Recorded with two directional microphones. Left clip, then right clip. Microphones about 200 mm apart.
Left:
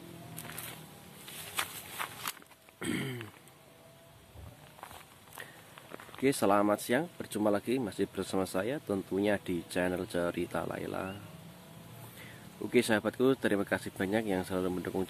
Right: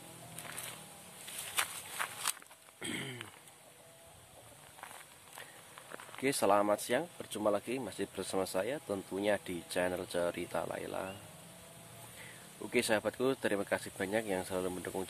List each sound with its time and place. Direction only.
0.4 s music: 20° left (ahead or behind)
1.3 s walk: 5° right (ahead or behind)
2.0 s walk: 5° left (ahead or behind)
2.8 s throat clearing: 20° left (ahead or behind)
5.9 s speech: centre (ahead or behind)
12.6 s speech: 10° left (ahead or behind)